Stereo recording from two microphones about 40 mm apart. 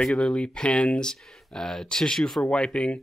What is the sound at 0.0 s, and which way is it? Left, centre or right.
Speech, left.